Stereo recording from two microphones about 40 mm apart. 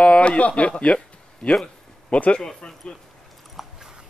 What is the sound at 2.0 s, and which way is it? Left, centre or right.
Speech, left.